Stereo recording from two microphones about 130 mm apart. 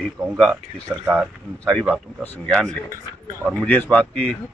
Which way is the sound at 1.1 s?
Centre (ahead or behind).